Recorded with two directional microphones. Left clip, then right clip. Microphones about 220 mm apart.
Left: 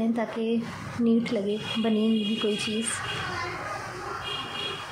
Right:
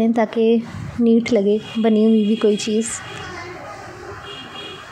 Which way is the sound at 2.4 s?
25° right (ahead or behind).